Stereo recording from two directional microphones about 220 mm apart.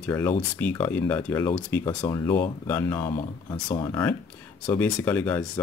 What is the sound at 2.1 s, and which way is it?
Speech, 15° left (ahead or behind).